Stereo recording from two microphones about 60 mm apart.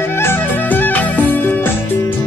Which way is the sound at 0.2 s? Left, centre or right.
Left.